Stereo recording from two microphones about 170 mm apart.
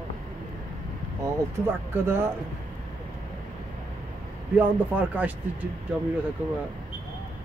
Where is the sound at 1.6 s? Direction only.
15° right (ahead or behind).